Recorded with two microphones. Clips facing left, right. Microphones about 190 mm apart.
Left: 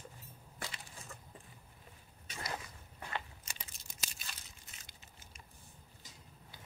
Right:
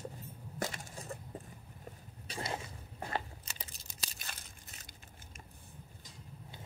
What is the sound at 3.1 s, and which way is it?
Crunch, 35° right (ahead or behind).